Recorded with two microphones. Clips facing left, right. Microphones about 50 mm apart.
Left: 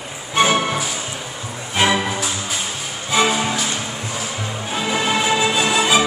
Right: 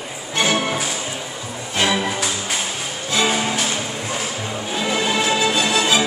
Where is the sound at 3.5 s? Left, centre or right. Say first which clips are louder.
Even; right.